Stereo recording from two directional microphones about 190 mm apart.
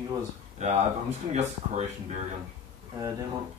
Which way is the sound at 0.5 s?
35° right (ahead or behind).